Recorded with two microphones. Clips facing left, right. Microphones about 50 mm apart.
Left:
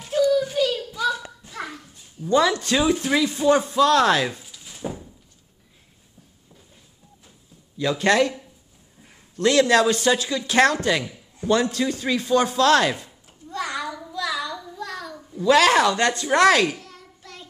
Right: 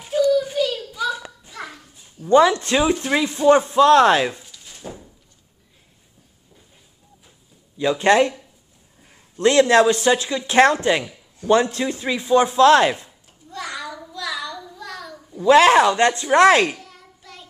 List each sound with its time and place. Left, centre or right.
0.2 s a sound: centre
2.2 s speech: right
2.8 s speech: centre
4.4 s drawer open or close: centre
7.7 s speech: right
9.4 s speech: right
13.5 s a sound: centre
13.9 s child singing: centre
15.4 s speech: right
16.7 s a sound: centre